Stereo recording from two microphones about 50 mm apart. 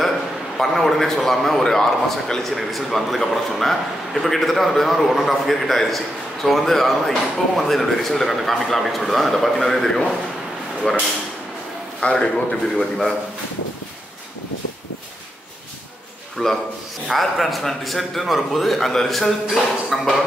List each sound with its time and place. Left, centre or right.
0.6 s a man's voice: centre
2.5 s speech: centre
12.0 s a man's voice: centre
16.4 s a man's voice: centre